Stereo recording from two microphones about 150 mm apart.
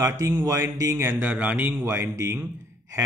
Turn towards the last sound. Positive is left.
turn(degrees=-15)  # may be behind; listen again after turning